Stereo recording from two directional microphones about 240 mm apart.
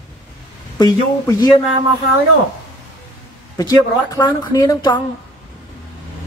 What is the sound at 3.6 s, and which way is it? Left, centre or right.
Speech, centre.